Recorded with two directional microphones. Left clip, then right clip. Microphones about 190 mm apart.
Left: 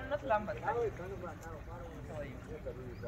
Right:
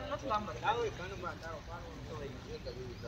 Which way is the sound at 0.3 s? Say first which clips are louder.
Even; 55° left (ahead or behind).